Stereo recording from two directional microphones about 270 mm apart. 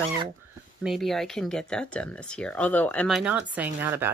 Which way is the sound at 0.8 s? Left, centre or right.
Centre.